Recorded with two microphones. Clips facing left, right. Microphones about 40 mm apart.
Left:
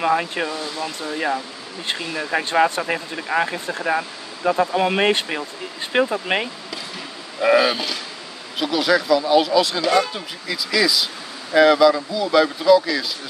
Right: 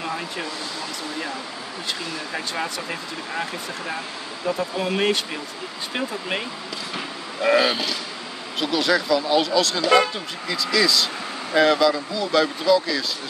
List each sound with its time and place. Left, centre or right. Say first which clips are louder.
0.0 s speech: left 8 dB; left
1.9 s speech: left 6 dB; left
7.4 s speech: left 2 dB; centre